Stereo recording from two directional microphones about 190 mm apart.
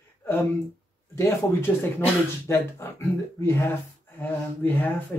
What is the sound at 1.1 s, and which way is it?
Speech, 15° left (ahead or behind).